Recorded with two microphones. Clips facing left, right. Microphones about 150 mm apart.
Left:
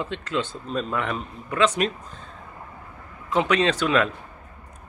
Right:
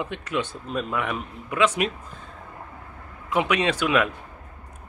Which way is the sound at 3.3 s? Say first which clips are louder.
Left 2 dB; 10° right (ahead or behind).